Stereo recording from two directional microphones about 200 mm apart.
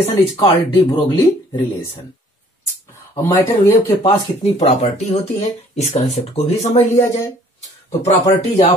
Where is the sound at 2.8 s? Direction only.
15° left (ahead or behind).